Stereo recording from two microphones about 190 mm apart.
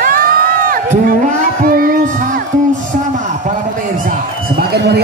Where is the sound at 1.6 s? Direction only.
50° right (ahead or behind).